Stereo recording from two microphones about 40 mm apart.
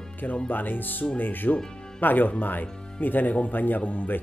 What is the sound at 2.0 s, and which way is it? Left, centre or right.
Speech, left.